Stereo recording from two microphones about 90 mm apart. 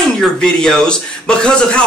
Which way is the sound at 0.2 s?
5° left (ahead or behind).